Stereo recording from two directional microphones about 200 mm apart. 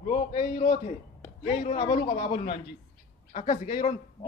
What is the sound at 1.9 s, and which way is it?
Speech, 45° left (ahead or behind).